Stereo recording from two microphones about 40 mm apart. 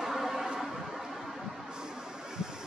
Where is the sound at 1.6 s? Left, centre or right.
Centre.